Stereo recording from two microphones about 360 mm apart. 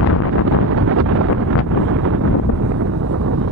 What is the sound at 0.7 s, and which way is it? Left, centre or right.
Wind noise, right.